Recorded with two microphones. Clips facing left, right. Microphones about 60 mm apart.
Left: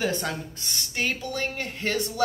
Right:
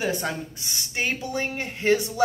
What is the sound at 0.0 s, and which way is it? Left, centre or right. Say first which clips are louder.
A woman's voice: right 1 dB; centre.